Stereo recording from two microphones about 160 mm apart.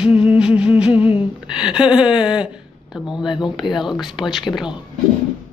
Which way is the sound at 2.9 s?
Centre (ahead or behind).